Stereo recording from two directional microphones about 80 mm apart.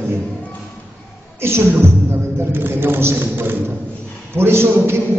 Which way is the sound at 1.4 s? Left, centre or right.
Right.